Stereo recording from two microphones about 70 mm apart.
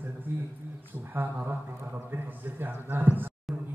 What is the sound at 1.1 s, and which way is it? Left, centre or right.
Speech, right.